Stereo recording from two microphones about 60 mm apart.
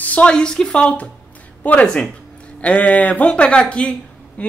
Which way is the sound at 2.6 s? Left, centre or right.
Left.